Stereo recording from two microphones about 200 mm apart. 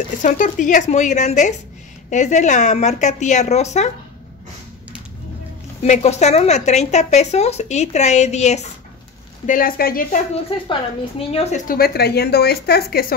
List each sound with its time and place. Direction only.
0.2 s a woman's voice: 40° left (ahead or behind)
5.8 s a woman's voice: 35° left (ahead or behind)
9.5 s speech: 45° left (ahead or behind)
10.7 s a woman's voice: 30° left (ahead or behind)
11.6 s speech: 50° left (ahead or behind)